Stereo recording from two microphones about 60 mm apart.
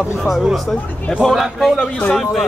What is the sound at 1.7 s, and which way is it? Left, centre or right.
Speech, centre.